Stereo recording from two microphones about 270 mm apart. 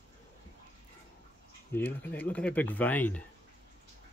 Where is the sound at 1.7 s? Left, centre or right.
Centre.